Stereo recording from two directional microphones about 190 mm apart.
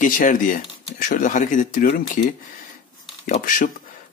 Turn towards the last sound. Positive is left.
turn(degrees=45)  # may be behind; listen again after turning